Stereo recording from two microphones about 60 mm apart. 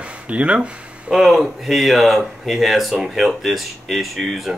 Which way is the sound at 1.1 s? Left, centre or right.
Centre.